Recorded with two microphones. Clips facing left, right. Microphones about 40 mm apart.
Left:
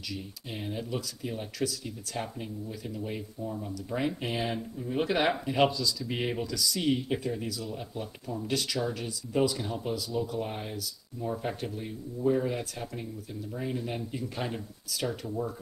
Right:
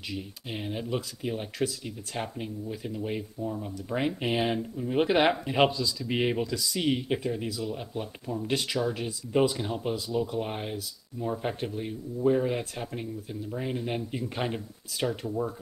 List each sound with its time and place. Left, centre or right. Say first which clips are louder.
0.1 s speech: right 4 dB; right
3.7 s speech: right 1 dB; right